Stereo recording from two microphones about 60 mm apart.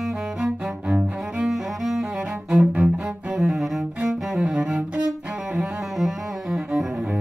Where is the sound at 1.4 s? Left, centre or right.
Centre.